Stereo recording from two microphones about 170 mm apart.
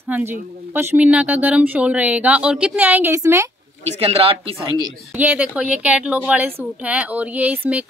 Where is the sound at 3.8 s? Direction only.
35° right (ahead or behind).